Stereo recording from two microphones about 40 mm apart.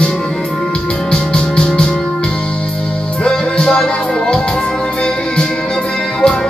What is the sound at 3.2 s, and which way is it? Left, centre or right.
Music, left.